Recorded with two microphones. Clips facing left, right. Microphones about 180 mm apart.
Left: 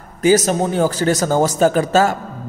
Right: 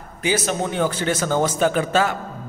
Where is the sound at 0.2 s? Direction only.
40° left (ahead or behind).